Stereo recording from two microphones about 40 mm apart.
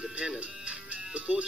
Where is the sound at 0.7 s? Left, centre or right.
Right.